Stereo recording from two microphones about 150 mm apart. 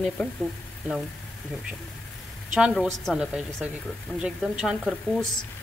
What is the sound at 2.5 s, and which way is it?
Speech, centre (ahead or behind).